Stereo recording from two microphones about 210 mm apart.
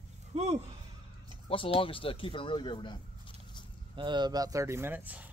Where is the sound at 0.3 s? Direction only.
30° right (ahead or behind).